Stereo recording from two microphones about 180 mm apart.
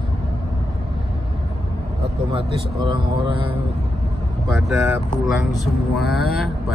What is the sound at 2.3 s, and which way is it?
A man's voice, 30° right (ahead or behind).